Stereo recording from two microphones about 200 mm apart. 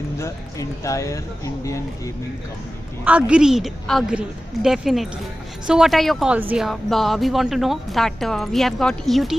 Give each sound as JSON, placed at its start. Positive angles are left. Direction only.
{"t": 0.2, "sound": "speech", "side_deg": 15}
{"t": 3.1, "sound": "a woman's voice", "side_deg": -5}